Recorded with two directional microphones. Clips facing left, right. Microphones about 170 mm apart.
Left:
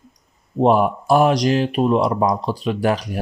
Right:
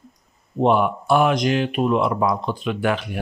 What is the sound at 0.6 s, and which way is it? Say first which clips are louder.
Speech: left 2 dB; 40° left (ahead or behind).